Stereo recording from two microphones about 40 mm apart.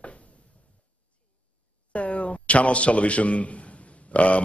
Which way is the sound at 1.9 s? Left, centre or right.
Left.